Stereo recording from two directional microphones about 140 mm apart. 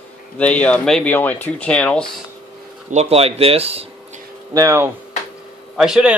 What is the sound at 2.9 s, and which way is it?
Speech, 50° right (ahead or behind).